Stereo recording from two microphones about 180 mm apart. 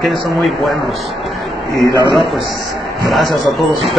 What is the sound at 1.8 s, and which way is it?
Speech, 20° right (ahead or behind).